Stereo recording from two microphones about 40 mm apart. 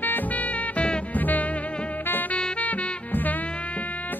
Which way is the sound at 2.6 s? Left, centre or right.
Left.